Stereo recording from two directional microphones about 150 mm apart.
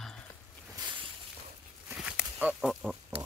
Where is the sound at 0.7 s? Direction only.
30° right (ahead or behind).